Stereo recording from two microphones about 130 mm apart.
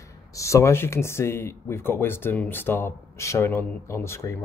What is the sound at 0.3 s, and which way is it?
Speech, 25° left (ahead or behind).